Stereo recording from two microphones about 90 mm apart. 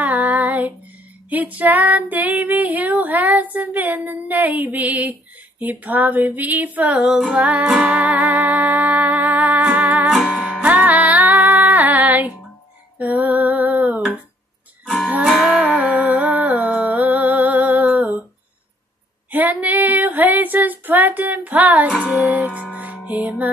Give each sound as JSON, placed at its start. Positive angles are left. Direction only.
{"t": 0.0, "sound": "female singing", "side_deg": -20}
{"t": 7.8, "sound": "music", "side_deg": -15}
{"t": 13.0, "sound": "female singing", "side_deg": -15}
{"t": 15.2, "sound": "music", "side_deg": -10}
{"t": 19.3, "sound": "female singing", "side_deg": -20}
{"t": 22.1, "sound": "music", "side_deg": -20}